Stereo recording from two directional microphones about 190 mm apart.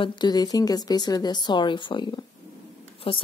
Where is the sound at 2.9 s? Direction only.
30° left (ahead or behind).